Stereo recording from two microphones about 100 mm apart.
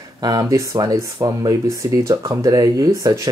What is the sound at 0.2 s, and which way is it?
Speech, 40° right (ahead or behind).